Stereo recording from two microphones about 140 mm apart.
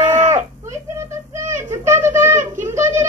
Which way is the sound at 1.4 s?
20° right (ahead or behind).